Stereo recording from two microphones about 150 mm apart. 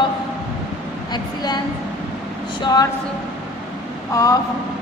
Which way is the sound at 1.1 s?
30° left (ahead or behind).